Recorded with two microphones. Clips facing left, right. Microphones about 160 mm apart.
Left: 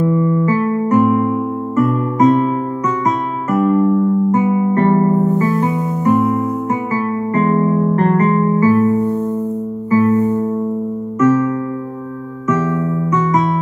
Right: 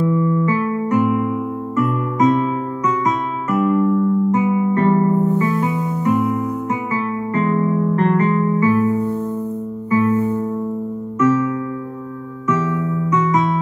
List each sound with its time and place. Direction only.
0.0 s music: 40° left (ahead or behind)